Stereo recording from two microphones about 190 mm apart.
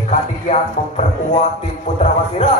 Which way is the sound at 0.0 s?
35° left (ahead or behind).